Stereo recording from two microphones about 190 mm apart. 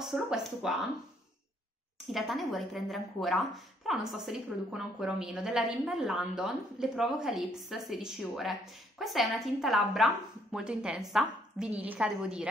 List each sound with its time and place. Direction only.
0.0 s speech: centre (ahead or behind)
2.1 s a woman's voice: centre (ahead or behind)